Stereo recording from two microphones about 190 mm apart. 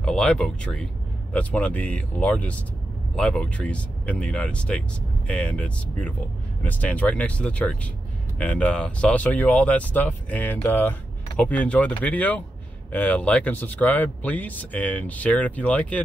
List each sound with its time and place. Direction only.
0.0 s speech: 5° left (ahead or behind)